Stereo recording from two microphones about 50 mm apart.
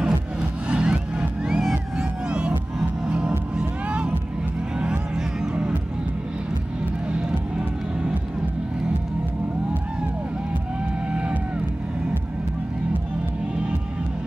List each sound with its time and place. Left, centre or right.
0.0 s music: centre
7.1 s music: centre
11.1 s music: right